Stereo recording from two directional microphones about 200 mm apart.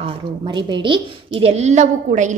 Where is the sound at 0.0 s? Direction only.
25° right (ahead or behind).